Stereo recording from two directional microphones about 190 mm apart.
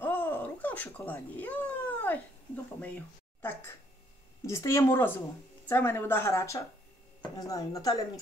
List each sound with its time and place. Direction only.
0.0 s cat: 10° left (ahead or behind)
4.5 s a woman's voice: 15° left (ahead or behind)